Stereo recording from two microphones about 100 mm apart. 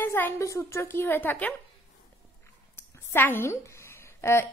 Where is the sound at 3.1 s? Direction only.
20° left (ahead or behind).